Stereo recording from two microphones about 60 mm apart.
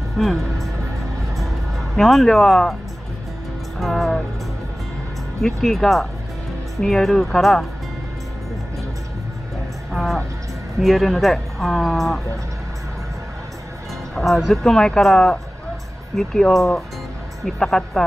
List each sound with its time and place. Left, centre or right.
0.2 s speech: centre
2.0 s speech: centre
3.8 s music: centre
5.6 s speech: centre
9.9 s speech: centre
14.2 s speech: centre